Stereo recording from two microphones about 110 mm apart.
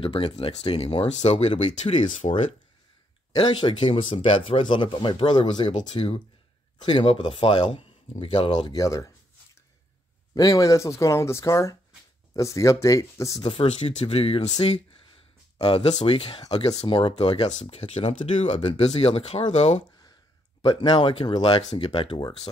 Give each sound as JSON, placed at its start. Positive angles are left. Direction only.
{"t": 0.0, "sound": "speech", "side_deg": 55}
{"t": 2.1, "sound": "speech", "side_deg": 90}
{"t": 3.3, "sound": "speech", "side_deg": 45}
{"t": 10.3, "sound": "speech", "side_deg": 35}
{"t": 13.4, "sound": "speech", "side_deg": 55}
{"t": 15.5, "sound": "a sound", "side_deg": 50}
{"t": 15.9, "sound": "speech", "side_deg": 60}
{"t": 17.5, "sound": "speech", "side_deg": 80}
{"t": 18.8, "sound": "speech", "side_deg": 75}
{"t": 20.6, "sound": "speech", "side_deg": 50}